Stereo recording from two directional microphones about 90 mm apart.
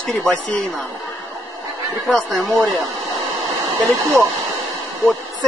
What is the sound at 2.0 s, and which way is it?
Speech, centre (ahead or behind).